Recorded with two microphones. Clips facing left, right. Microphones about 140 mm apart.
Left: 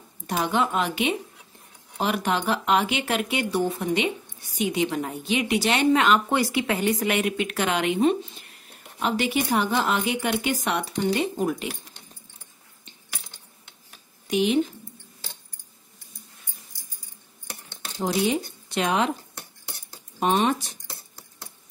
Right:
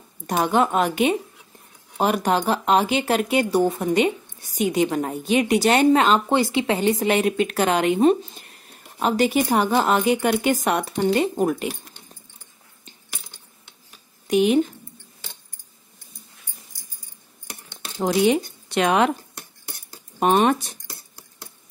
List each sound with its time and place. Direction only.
0.3 s speech: 45° right (ahead or behind)
6.0 s speech: 30° right (ahead or behind)
14.2 s speech: 50° right (ahead or behind)
18.3 s speech: 70° right (ahead or behind)
20.2 s speech: 50° right (ahead or behind)